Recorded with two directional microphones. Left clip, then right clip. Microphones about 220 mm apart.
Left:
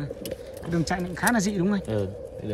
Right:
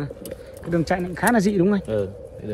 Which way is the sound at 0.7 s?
15° left (ahead or behind).